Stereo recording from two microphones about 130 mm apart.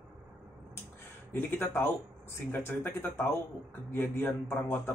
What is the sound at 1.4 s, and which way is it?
Speech, 15° left (ahead or behind).